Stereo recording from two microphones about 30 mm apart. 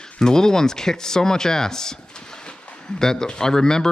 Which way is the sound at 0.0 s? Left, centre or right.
Left.